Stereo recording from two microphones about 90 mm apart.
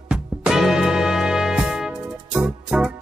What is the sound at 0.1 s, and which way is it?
Music, 5° right (ahead or behind).